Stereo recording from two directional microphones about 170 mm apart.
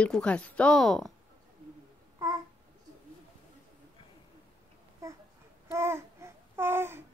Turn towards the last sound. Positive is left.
turn(degrees=-15)  # may be behind; listen again after turning